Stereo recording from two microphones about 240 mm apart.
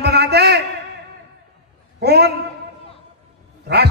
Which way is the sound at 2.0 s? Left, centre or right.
Right.